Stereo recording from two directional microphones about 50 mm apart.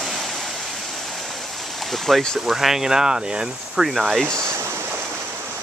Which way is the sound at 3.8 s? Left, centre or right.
Centre.